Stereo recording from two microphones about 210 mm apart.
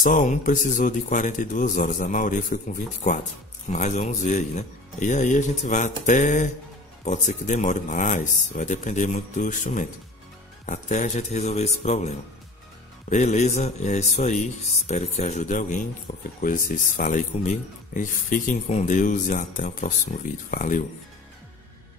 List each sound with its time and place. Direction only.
0.0 s speech: 40° left (ahead or behind)
13.1 s speech: 35° left (ahead or behind)